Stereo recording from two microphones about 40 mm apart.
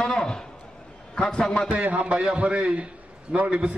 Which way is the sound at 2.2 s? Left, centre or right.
Right.